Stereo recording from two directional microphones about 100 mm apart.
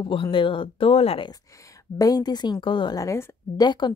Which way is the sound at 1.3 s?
35° left (ahead or behind).